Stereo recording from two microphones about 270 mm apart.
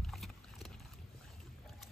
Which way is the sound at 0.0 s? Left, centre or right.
Centre.